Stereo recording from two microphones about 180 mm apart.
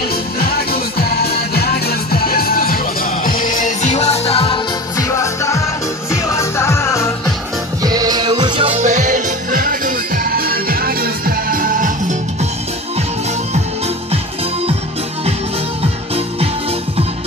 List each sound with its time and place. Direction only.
0.1 s music: 60° left (ahead or behind); by 4.6 s 30° left (ahead or behind)
4.9 s music: 15° left (ahead or behind)
7.8 s music: 20° right (ahead or behind); by 12.4 s 45° right (ahead or behind)